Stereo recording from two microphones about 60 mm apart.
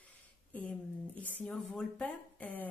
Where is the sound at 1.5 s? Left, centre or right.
Centre.